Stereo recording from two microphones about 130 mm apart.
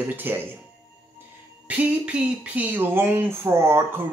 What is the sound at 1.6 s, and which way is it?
Speech, 10° right (ahead or behind).